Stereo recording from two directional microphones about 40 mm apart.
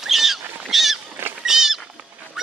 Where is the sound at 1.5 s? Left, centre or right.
Centre.